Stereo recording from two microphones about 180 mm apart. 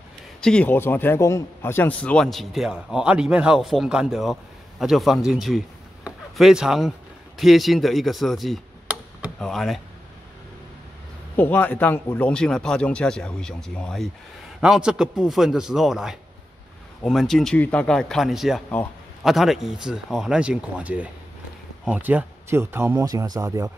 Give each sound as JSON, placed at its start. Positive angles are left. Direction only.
{"t": 0.4, "sound": "a man's voice", "side_deg": 5}
{"t": 11.3, "sound": "a man's voice", "side_deg": 10}